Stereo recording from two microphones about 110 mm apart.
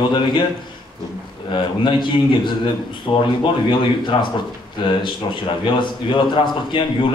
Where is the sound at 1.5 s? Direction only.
45° left (ahead or behind).